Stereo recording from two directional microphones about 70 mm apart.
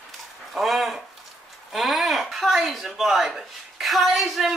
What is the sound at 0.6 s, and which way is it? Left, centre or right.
Speech, centre.